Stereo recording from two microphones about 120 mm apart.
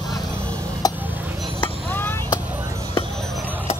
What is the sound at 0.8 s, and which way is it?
Tick-tock, 30° left (ahead or behind).